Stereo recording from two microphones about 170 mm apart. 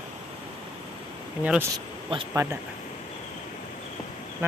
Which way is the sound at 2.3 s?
15° right (ahead or behind).